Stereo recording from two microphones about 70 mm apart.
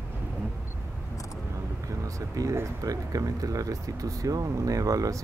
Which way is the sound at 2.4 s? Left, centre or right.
Right.